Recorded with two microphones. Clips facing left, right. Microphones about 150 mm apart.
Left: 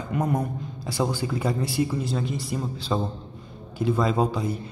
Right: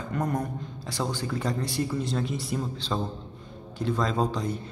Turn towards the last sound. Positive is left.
turn(degrees=5)  # may be behind; listen again after turning